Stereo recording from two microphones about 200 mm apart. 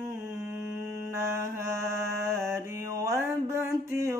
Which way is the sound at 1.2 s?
15° right (ahead or behind).